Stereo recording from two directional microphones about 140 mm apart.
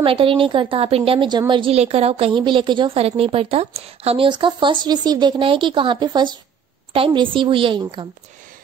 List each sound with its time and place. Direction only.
0.0 s a woman's voice: 40° right (ahead or behind)
4.3 s speech: 35° right (ahead or behind)